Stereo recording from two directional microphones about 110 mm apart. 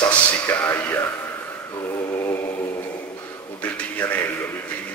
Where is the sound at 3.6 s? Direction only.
15° left (ahead or behind).